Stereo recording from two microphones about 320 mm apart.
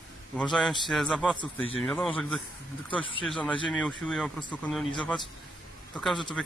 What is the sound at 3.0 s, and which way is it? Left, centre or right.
Speech, centre.